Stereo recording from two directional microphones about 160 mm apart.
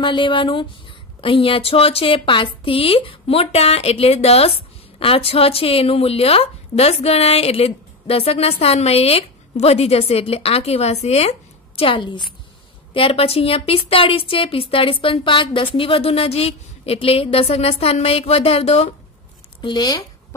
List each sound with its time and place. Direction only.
0.0 s speech: 30° left (ahead or behind)
19.6 s speech: 25° left (ahead or behind)